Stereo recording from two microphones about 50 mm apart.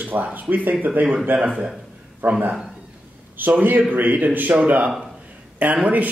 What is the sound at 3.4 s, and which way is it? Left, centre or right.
Speech, right.